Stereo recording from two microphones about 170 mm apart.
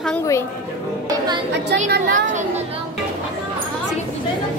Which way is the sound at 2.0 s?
50° right (ahead or behind).